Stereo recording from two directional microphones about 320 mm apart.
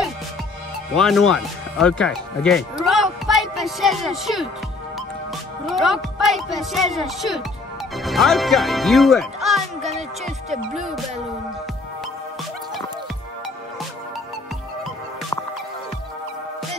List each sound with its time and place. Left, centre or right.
0.9 s speech: centre
5.7 s speech: centre
9.8 s music: right